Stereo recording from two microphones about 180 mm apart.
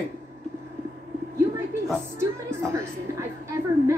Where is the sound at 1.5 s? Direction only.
15° right (ahead or behind).